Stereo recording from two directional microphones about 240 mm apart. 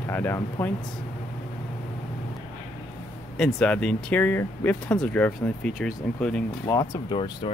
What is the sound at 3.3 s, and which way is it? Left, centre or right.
Speech, centre.